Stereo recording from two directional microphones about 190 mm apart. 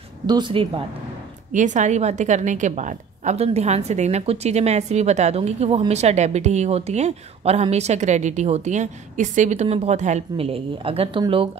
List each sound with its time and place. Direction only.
0.3 s speech: 25° right (ahead or behind)
1.5 s a woman's voice: 40° right (ahead or behind)